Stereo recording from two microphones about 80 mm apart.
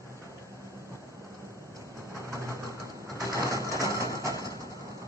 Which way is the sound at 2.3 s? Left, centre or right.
Right.